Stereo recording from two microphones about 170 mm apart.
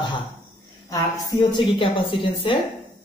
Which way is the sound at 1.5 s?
30° left (ahead or behind).